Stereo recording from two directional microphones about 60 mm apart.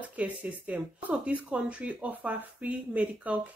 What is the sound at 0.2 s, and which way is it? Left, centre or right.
Speech, right.